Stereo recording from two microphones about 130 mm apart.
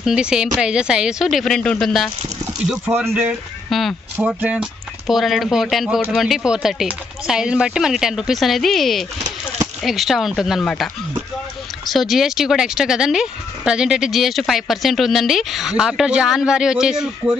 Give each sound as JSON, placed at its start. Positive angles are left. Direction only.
{"t": 0.0, "sound": "speech", "side_deg": -5}
{"t": 3.1, "sound": "speech", "side_deg": -20}
{"t": 3.7, "sound": "speech", "side_deg": 0}
{"t": 4.2, "sound": "speech", "side_deg": -10}